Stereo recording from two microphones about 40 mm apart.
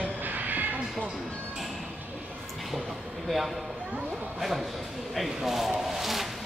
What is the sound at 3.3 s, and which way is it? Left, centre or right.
Speech, centre.